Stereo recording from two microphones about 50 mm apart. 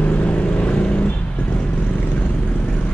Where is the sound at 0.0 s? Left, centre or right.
Left.